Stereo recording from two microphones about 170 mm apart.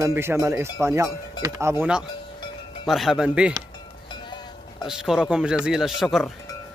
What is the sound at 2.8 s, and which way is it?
Speech, centre (ahead or behind).